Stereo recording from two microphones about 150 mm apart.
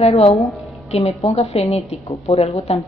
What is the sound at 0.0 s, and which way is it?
A woman's voice, 45° left (ahead or behind).